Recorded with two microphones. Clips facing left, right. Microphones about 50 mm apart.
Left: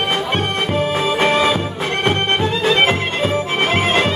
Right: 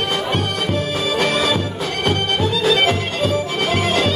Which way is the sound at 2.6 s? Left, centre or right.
Left.